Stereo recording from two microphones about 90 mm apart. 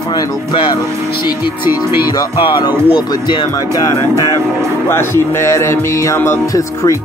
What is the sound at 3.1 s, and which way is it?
Speech, 50° left (ahead or behind).